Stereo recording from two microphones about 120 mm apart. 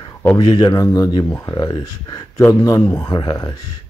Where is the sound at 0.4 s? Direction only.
35° left (ahead or behind).